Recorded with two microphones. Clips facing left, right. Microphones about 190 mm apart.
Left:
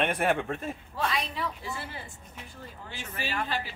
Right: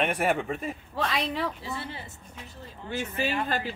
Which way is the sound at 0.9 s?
70° right (ahead or behind).